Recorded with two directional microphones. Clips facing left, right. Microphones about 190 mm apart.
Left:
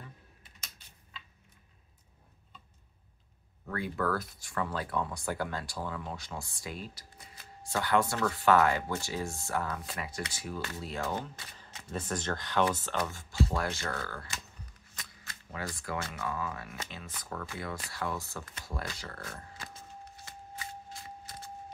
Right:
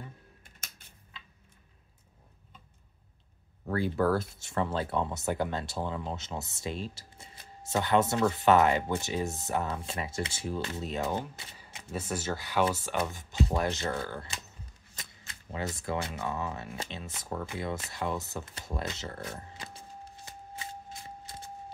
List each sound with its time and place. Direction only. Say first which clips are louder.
0.4 s typing: right 1 dB; 50° right (ahead or behind)
3.6 s speech: right 5 dB; 30° right (ahead or behind)
11.5 s speech: right 1 dB; 10° right (ahead or behind); by 20.2 s 30° right (ahead or behind)
20.2 s a sound: right 1 dB; 20° right (ahead or behind)